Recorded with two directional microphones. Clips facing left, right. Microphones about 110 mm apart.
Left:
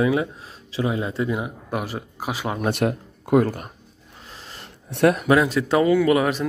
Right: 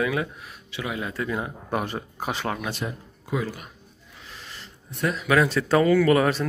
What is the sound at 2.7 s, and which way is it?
Speech, 60° left (ahead or behind).